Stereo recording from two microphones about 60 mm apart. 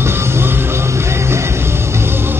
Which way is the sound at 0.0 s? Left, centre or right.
Right.